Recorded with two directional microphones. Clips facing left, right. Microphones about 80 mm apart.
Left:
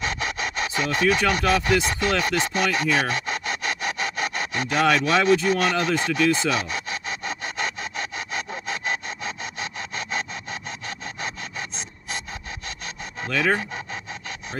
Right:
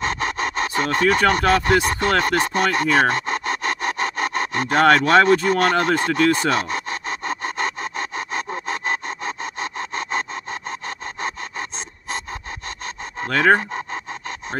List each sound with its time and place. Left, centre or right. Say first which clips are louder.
0.0 s sawing: right 4 dB; right
13.3 s speech: right 7 dB; right